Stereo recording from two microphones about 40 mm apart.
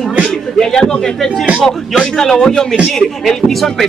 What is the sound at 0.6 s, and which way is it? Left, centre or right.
Speech, centre.